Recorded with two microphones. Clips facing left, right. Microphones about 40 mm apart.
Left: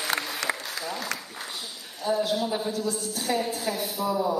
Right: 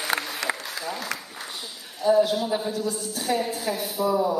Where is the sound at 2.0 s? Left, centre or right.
Centre.